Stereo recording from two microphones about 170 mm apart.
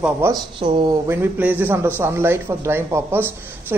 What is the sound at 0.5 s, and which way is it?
Speech, 30° right (ahead or behind).